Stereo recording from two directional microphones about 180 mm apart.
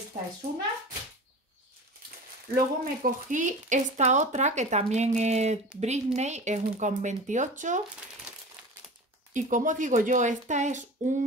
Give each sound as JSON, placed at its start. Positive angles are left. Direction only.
{"t": 2.5, "sound": "a woman's voice", "side_deg": -50}
{"t": 9.3, "sound": "speech", "side_deg": -45}